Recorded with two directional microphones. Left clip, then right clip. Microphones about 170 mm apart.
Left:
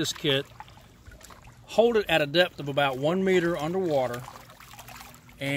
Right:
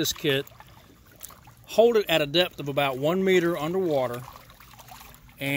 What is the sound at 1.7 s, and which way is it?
Speech, 25° right (ahead or behind).